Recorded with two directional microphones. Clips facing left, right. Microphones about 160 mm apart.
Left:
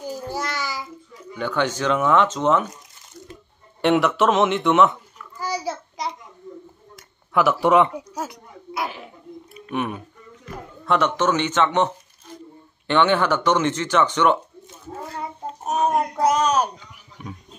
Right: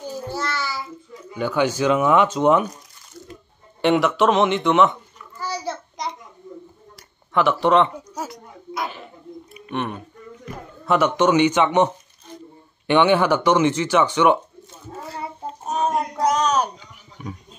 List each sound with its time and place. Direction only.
0.0 s child singing: 10° left (ahead or behind)
1.3 s speech: 10° right (ahead or behind)
3.8 s speech: centre (ahead or behind)
5.4 s child singing: 10° left (ahead or behind)
7.3 s a sound: 5° left (ahead or behind)
9.7 s speech: 5° left (ahead or behind)
10.9 s speech: 10° right (ahead or behind)
15.6 s a sound: 20° left (ahead or behind)
16.2 s child singing: 10° left (ahead or behind)
17.2 s speech: centre (ahead or behind)